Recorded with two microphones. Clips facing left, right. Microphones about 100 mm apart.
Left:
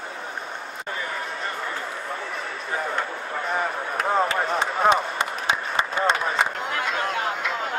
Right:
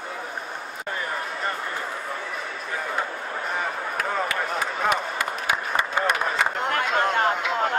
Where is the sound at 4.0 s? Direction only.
25° left (ahead or behind).